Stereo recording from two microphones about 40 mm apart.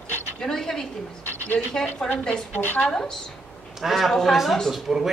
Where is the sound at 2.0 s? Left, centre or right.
Centre.